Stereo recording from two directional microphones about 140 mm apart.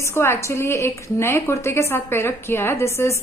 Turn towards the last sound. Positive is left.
turn(degrees=20)  # may be behind; listen again after turning